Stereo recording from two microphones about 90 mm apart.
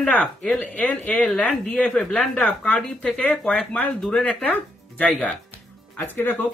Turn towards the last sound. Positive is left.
turn(degrees=20)  # may be behind; listen again after turning